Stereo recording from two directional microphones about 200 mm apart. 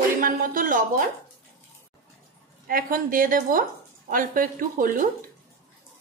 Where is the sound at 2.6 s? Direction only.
45° right (ahead or behind).